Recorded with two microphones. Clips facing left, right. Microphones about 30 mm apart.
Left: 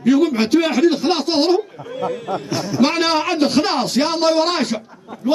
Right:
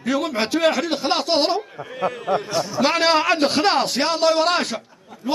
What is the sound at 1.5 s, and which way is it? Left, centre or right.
Speech, centre.